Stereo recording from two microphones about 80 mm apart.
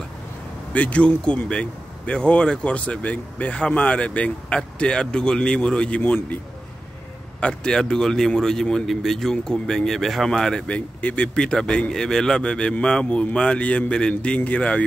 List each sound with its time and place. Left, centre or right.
0.7 s speech: centre